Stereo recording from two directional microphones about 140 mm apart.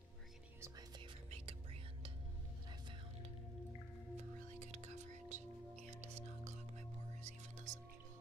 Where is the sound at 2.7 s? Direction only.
35° right (ahead or behind).